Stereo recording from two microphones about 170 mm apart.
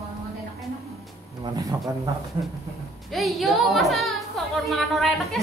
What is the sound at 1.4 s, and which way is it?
Speech, 20° right (ahead or behind).